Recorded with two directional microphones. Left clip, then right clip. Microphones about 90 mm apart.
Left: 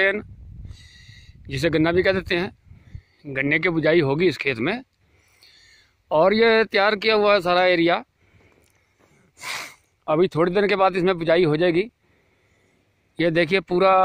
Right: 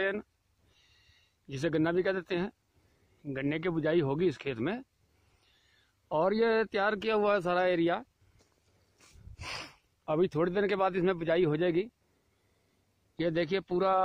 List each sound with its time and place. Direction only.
0.0 s a man's voice: 10° left (ahead or behind)
5.4 s a sound: 20° left (ahead or behind)
7.2 s a man's voice: 10° left (ahead or behind)
9.4 s gasp: 5° right (ahead or behind)
10.0 s a man's voice: 15° left (ahead or behind)
13.1 s speech: 25° left (ahead or behind)